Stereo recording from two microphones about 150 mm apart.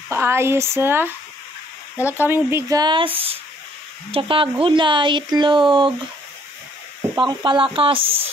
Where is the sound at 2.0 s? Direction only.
15° left (ahead or behind).